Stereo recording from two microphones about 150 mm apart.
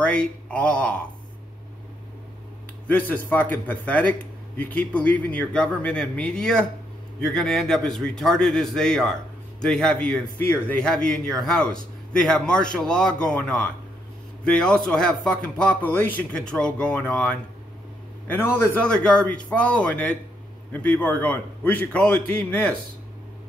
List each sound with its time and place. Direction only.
0.0 s speech: 5° left (ahead or behind)
2.9 s a man's voice: 15° left (ahead or behind)
10.4 s a man's voice: 15° left (ahead or behind)
10.8 s a man's voice: 5° left (ahead or behind)